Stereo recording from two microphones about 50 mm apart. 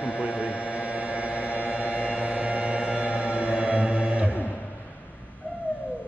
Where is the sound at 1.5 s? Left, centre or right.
Right.